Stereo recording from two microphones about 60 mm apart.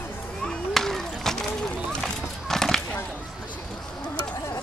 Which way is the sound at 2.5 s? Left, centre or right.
Centre.